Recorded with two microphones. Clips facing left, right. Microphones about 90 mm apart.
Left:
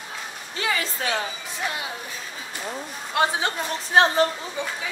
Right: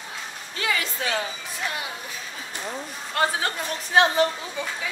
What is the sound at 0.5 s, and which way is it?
Speech, 30° left (ahead or behind).